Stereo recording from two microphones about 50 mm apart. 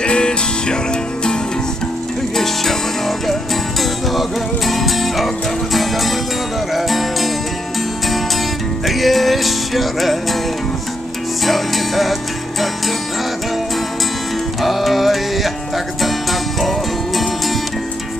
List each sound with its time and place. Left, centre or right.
0.0 s music: centre
2.3 s music: centre
4.1 s music: centre
8.8 s music: centre
11.4 s music: centre
14.6 s music: centre